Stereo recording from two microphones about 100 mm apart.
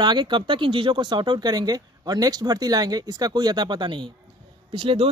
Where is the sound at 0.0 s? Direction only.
50° right (ahead or behind).